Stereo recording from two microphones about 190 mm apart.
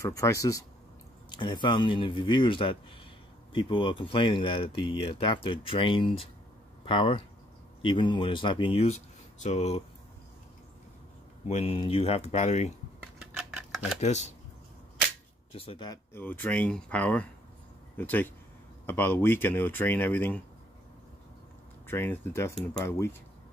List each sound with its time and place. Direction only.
0.0 s speech: 15° left (ahead or behind); by 9.8 s 35° left (ahead or behind)
11.4 s speech: 35° left (ahead or behind)
13.2 s scissors: 5° right (ahead or behind)
14.0 s speech: 35° left (ahead or behind)
15.5 s speech: 30° left (ahead or behind); by 20.4 s 10° left (ahead or behind)
21.8 s speech: 10° left (ahead or behind)